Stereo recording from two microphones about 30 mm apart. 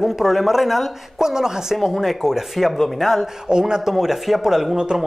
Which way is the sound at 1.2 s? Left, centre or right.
Centre.